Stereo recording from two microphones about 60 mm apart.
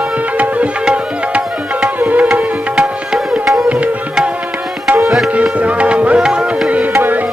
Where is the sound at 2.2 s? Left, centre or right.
Centre.